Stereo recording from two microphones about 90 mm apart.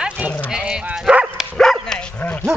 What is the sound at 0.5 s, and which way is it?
Bow-wow, 10° right (ahead or behind).